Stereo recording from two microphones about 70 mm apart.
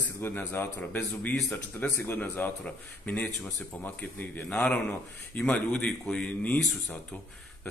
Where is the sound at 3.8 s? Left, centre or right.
Left.